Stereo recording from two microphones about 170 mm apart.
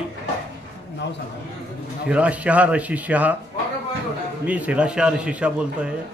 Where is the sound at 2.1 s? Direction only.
5° right (ahead or behind).